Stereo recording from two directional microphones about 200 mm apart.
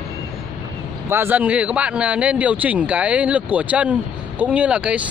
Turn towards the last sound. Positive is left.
turn(degrees=-5)  # may be behind; listen again after turning